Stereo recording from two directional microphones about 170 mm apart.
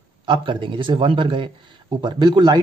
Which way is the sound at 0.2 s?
30° right (ahead or behind).